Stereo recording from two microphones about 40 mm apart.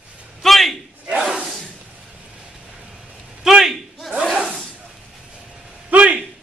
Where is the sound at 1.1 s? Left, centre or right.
Right.